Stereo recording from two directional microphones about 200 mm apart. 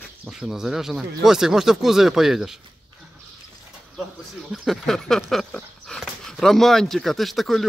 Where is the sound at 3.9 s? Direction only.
Centre (ahead or behind).